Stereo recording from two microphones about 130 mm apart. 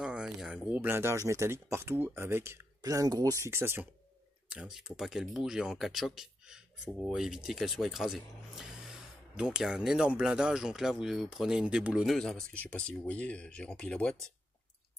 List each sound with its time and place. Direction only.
0.0 s speech: 5° right (ahead or behind)
4.5 s speech: 5° right (ahead or behind); by 14.1 s 10° left (ahead or behind)